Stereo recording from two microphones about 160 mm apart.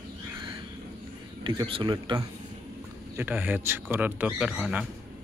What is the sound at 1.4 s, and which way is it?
Speech, 30° right (ahead or behind).